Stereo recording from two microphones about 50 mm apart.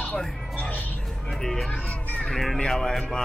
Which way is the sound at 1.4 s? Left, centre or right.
Centre.